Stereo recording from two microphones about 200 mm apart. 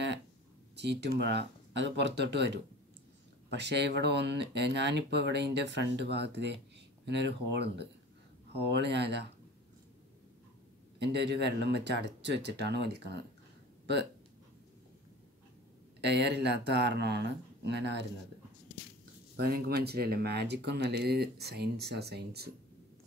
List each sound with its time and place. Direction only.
0.7 s speech: 60° right (ahead or behind)
11.0 s speech: 60° right (ahead or behind)
16.0 s speech: 60° right (ahead or behind)
19.3 s speech: 50° right (ahead or behind)